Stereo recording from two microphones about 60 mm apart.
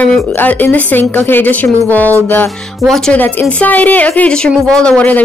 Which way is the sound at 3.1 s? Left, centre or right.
Left.